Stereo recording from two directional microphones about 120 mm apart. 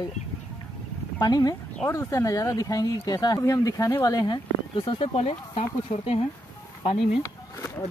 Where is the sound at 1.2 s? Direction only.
30° left (ahead or behind).